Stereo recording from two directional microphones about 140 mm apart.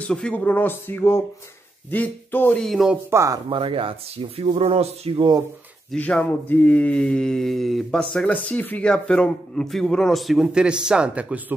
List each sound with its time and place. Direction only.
0.0 s speech: 5° left (ahead or behind)
2.6 s mantra: centre (ahead or behind)
3.1 s speech: 20° right (ahead or behind)
3.4 s speech: 40° right (ahead or behind)
4.4 s a sound: 45° right (ahead or behind)
5.9 s mantra: 5° left (ahead or behind); by 11.5 s 10° right (ahead or behind)